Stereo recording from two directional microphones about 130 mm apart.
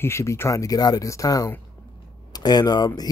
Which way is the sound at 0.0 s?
20° left (ahead or behind).